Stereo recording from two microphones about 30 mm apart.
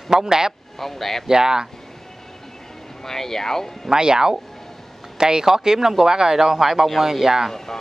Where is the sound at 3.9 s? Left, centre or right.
Right.